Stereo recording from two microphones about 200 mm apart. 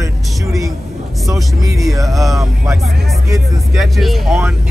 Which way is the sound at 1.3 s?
15° right (ahead or behind).